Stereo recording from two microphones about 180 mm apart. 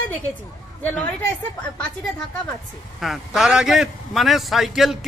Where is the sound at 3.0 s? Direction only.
Centre (ahead or behind).